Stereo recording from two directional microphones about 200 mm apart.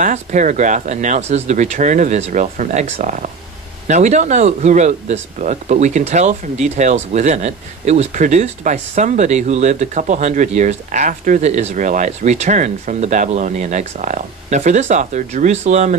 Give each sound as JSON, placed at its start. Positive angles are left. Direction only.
{"t": 0.0, "sound": "speech", "side_deg": -40}